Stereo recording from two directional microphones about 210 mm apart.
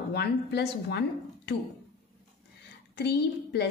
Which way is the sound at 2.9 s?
55° left (ahead or behind).